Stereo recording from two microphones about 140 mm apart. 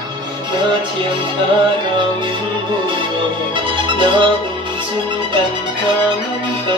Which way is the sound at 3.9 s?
35° right (ahead or behind).